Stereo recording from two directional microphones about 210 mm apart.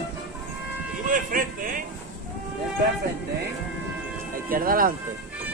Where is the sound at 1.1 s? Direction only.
40° right (ahead or behind).